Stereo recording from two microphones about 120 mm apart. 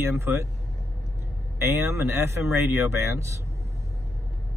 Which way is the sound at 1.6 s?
20° right (ahead or behind).